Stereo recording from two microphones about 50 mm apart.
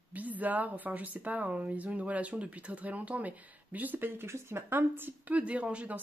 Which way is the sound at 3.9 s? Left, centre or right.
Right.